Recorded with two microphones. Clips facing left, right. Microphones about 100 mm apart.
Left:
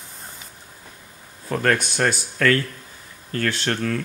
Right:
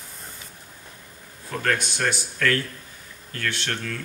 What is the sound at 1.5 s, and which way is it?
Speech, 50° left (ahead or behind).